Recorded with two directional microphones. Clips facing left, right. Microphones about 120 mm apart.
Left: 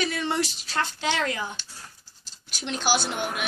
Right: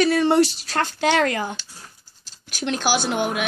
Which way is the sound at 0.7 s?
55° right (ahead or behind).